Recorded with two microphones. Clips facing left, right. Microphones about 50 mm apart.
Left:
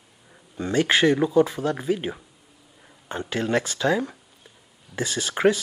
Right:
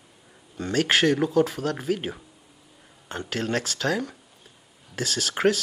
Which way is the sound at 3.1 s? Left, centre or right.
Centre.